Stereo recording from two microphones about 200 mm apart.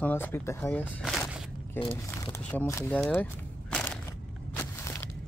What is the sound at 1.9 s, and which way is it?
Speech, 10° left (ahead or behind).